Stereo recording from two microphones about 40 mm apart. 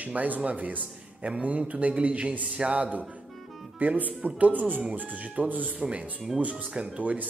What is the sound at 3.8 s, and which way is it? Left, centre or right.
Speech, right.